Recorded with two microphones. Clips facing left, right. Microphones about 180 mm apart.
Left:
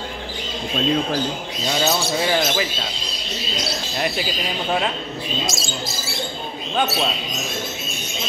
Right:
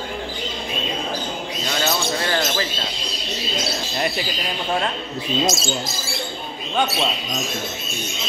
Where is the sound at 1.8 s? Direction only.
10° left (ahead or behind).